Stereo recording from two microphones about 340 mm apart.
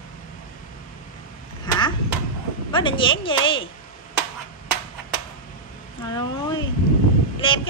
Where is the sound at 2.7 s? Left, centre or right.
Centre.